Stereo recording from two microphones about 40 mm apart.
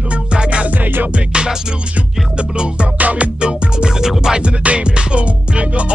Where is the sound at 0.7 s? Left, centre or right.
Right.